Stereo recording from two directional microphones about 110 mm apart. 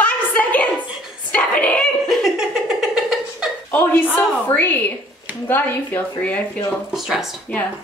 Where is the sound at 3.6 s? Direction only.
15° left (ahead or behind).